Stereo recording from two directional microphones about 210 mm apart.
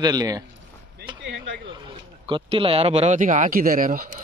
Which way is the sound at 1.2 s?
55° right (ahead or behind).